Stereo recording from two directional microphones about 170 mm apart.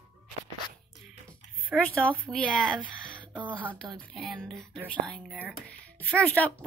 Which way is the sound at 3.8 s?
5° left (ahead or behind).